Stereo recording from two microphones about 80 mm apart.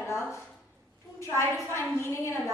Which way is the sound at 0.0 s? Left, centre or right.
Left.